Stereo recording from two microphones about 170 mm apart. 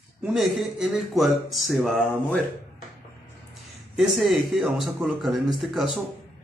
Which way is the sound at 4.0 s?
Centre (ahead or behind).